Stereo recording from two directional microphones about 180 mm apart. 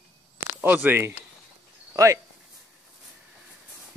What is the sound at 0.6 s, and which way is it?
Speech, 10° right (ahead or behind).